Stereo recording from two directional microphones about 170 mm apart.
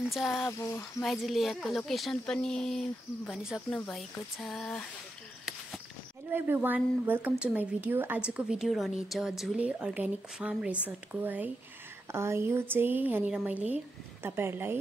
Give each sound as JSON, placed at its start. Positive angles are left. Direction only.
{"t": 0.1, "sound": "speech", "side_deg": 0}
{"t": 0.5, "sound": "a sound", "side_deg": 15}
{"t": 1.0, "sound": "speech", "side_deg": 0}
{"t": 6.3, "sound": "speech", "side_deg": -10}